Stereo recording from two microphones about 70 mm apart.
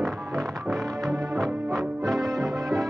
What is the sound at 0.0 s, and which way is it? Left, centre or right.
Music, centre.